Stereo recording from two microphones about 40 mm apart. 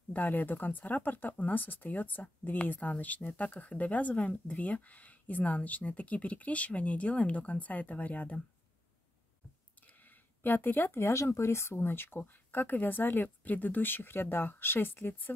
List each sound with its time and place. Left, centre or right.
0.1 s speech: left
10.0 s speech: left
12.2 s speech: left